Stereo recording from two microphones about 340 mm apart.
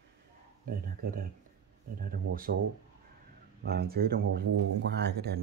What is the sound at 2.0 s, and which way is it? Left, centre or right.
Speech, right.